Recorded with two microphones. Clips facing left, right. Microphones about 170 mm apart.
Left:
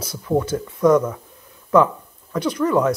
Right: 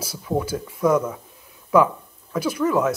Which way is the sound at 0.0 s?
10° right (ahead or behind).